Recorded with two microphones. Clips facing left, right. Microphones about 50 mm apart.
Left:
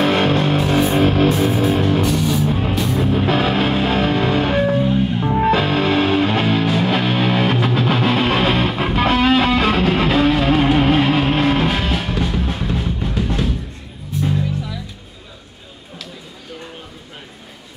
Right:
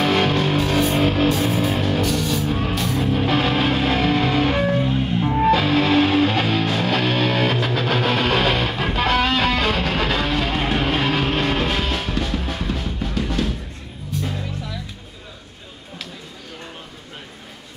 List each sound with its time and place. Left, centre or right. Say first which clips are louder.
0.0 s music: left 3 dB; left
1.4 s music: left 4 dB; centre
1.8 s music: left 4 dB; centre
2.0 s music: left 3 dB; centre
4.8 s music: left 3 dB; centre
5.7 s music: even; centre
6.6 s music: left 3 dB; centre